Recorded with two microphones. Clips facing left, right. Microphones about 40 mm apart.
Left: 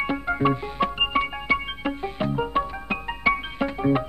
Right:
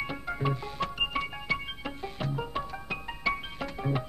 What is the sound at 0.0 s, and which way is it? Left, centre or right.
Music, left.